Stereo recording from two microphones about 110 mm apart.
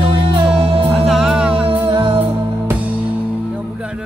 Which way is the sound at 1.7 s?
50° right (ahead or behind).